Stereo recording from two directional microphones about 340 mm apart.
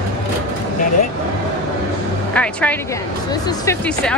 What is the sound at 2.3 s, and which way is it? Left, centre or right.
Speech, centre.